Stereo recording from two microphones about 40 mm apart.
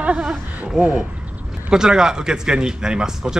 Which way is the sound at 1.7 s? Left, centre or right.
Centre.